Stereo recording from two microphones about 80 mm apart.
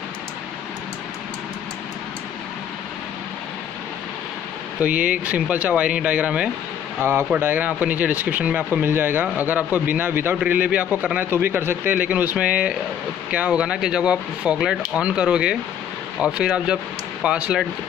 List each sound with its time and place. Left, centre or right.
4.8 s speech: centre
7.0 s a man's voice: right; by 17.6 s centre